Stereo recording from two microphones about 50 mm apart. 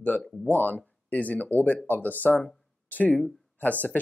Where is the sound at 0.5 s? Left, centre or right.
Left.